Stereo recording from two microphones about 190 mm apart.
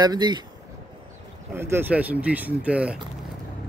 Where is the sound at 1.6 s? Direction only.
10° right (ahead or behind).